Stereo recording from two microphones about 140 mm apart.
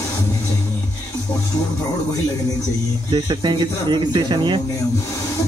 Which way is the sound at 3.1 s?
30° right (ahead or behind).